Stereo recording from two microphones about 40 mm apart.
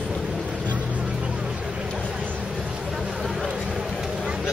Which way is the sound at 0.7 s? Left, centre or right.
Right.